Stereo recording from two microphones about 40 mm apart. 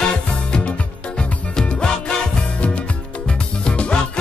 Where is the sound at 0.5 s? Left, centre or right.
Centre.